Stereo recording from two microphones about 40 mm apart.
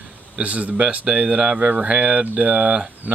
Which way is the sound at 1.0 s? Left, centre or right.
Right.